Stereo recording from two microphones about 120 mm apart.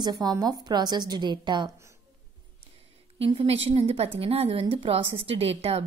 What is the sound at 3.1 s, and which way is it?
A woman's voice, 50° right (ahead or behind).